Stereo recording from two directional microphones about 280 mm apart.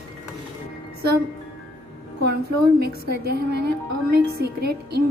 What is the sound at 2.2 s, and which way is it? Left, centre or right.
A woman's voice, right.